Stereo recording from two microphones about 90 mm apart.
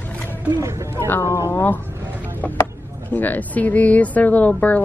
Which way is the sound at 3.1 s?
20° left (ahead or behind).